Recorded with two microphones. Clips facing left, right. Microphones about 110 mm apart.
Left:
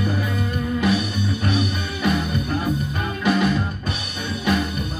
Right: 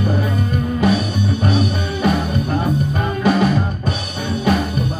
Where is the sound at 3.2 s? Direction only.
40° right (ahead or behind).